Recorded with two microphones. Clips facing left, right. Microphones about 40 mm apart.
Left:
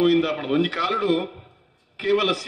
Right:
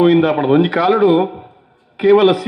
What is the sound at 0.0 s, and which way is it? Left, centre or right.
A man's voice, centre.